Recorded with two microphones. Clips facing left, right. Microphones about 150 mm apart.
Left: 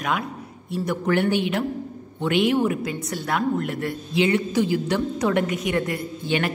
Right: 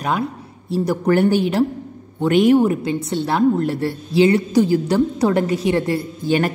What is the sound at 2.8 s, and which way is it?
A woman's voice, 25° right (ahead or behind).